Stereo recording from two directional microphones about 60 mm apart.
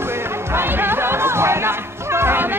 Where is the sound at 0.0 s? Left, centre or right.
Right.